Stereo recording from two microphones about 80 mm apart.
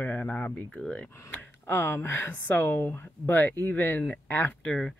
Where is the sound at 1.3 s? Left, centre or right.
Left.